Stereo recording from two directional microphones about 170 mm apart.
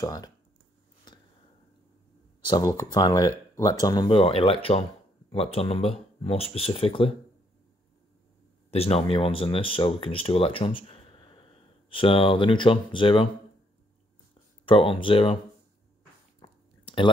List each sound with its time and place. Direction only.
0.0 s speech: 20° left (ahead or behind)
2.4 s speech: 25° left (ahead or behind)
8.6 s speech: 35° left (ahead or behind)
14.7 s speech: 30° left (ahead or behind)
16.3 s a sound: 30° left (ahead or behind)